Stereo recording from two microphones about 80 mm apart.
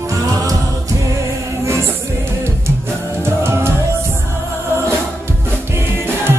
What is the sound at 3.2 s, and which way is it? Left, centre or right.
Music, right.